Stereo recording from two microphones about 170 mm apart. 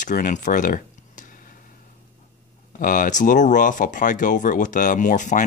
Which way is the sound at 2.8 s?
50° left (ahead or behind).